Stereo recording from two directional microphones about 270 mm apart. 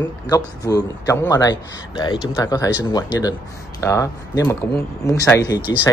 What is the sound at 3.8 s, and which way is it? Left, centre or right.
Speech, centre.